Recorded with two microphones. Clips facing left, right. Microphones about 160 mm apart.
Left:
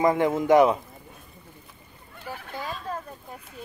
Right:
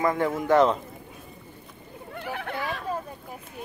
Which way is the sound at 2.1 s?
65° right (ahead or behind).